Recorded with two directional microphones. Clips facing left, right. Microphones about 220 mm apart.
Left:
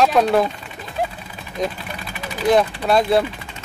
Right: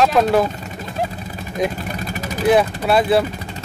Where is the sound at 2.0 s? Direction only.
45° right (ahead or behind).